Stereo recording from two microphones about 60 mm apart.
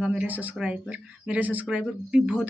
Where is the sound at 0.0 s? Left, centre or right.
Centre.